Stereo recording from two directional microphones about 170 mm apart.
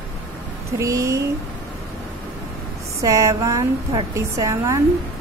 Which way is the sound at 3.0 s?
20° right (ahead or behind).